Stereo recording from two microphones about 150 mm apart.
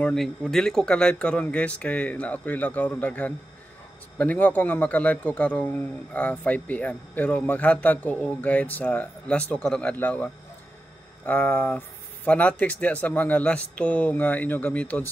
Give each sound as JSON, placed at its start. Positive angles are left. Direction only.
{"t": 0.0, "sound": "a man's voice", "side_deg": 0}